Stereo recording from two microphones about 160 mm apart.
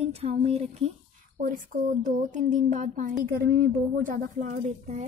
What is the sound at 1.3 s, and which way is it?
Speech, 60° right (ahead or behind).